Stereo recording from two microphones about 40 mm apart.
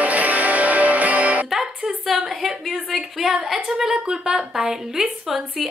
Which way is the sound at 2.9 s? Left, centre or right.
Centre.